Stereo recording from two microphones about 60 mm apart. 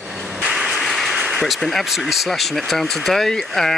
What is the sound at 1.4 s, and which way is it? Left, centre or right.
Speech, centre.